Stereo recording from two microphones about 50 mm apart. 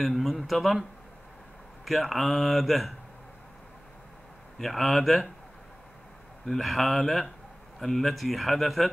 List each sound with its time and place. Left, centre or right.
0.0 s speech: centre
1.9 s speech: centre
4.6 s speech: centre
6.4 s speech: centre